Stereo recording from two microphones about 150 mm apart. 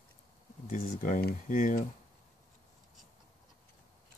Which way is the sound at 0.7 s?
60° left (ahead or behind).